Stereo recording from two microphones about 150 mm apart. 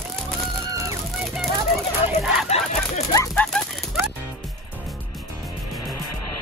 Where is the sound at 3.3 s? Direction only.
5° left (ahead or behind).